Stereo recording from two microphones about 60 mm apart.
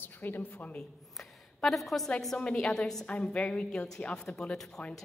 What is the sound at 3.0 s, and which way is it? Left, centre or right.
A woman's voice, centre.